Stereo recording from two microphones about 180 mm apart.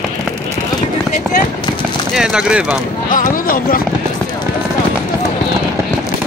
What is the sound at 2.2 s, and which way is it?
Speech, 5° right (ahead or behind).